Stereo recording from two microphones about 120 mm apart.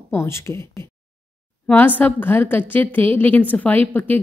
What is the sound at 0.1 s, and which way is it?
Speech, 20° left (ahead or behind).